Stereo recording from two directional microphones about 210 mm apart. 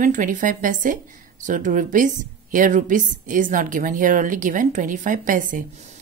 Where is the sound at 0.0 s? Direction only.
40° right (ahead or behind).